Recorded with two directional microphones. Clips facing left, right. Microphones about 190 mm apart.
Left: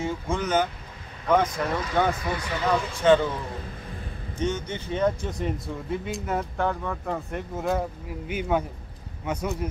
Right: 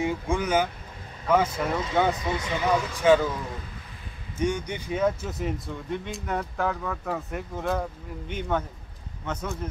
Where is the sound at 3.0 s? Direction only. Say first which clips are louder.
Left 1 dB; 5° right (ahead or behind).